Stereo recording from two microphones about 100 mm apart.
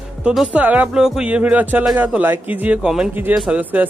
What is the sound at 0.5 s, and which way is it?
Speech, 15° right (ahead or behind).